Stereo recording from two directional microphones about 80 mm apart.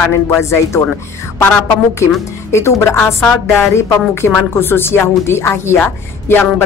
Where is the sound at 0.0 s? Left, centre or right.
Left.